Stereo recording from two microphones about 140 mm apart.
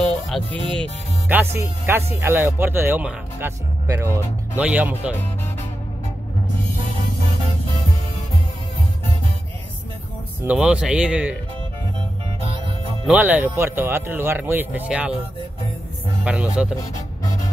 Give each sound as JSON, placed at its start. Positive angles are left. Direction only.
{"t": 0.3, "sound": "speech", "side_deg": 0}
{"t": 1.3, "sound": "speech", "side_deg": -15}
{"t": 10.4, "sound": "speech", "side_deg": -10}
{"t": 13.0, "sound": "speech", "side_deg": -10}
{"t": 16.3, "sound": "speech", "side_deg": -5}